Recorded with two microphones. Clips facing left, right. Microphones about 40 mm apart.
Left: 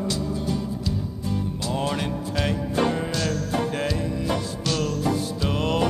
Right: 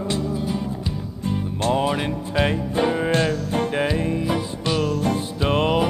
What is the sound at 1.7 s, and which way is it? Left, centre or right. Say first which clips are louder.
Speech: right 2 dB; centre.